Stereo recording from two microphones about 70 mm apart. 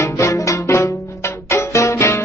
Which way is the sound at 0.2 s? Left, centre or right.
Left.